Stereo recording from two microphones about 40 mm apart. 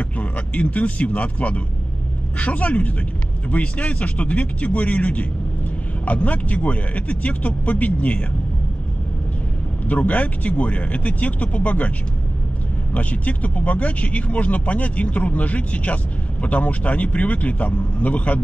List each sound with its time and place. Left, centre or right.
0.2 s speech: left
9.8 s speech: left
12.9 s speech: left